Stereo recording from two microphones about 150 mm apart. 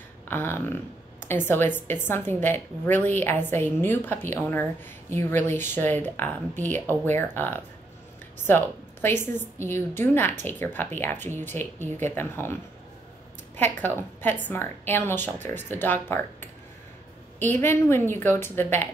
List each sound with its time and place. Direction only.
0.3 s a woman's voice: 15° left (ahead or behind)
13.6 s a woman's voice: 10° left (ahead or behind)
17.6 s a woman's voice: 15° left (ahead or behind)